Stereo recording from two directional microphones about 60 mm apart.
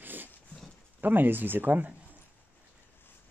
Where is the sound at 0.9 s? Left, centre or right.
Right.